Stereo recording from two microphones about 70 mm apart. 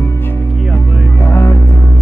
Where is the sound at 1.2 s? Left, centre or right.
Left.